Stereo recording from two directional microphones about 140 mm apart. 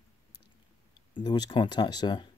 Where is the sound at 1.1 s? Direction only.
30° left (ahead or behind).